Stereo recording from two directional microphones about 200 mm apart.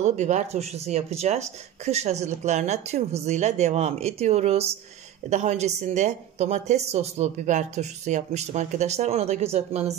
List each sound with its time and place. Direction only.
0.0 s a woman's voice: 35° right (ahead or behind)